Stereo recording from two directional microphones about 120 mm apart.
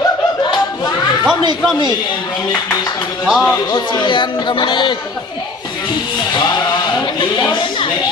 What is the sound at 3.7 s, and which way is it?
Speech, 40° left (ahead or behind).